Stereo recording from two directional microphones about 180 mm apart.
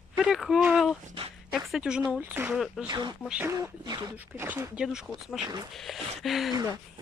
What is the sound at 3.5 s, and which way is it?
Speech, 20° right (ahead or behind).